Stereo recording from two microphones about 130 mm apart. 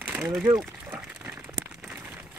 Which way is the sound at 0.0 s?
15° right (ahead or behind).